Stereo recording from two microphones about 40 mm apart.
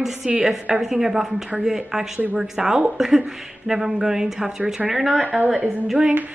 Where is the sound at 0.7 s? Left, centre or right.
Centre.